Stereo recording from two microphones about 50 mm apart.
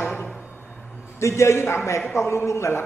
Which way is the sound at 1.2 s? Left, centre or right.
Left.